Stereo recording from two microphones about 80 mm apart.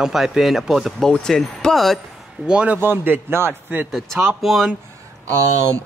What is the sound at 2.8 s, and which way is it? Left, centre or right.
A man's voice, right.